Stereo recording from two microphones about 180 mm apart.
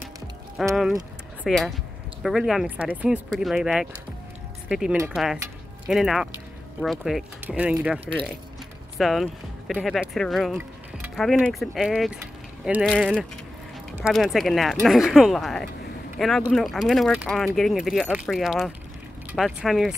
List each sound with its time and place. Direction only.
0.6 s speech: centre (ahead or behind)
8.0 s speech: 30° right (ahead or behind)
8.9 s speech: centre (ahead or behind)